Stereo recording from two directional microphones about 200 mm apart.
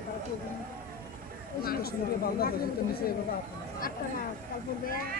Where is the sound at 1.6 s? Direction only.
50° left (ahead or behind).